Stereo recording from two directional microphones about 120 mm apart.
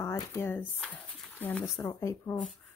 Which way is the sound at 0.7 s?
Centre (ahead or behind).